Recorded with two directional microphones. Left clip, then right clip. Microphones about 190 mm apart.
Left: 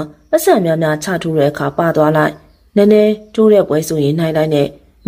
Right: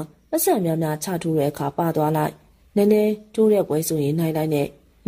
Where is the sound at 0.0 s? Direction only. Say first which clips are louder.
Left 10 dB; 45° right (ahead or behind).